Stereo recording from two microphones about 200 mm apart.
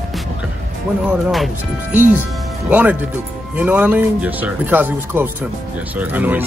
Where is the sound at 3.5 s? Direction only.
10° right (ahead or behind).